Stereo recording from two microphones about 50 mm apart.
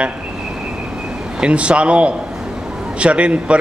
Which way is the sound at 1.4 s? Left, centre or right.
Right.